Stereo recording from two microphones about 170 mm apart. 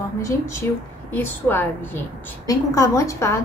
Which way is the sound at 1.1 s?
10° left (ahead or behind).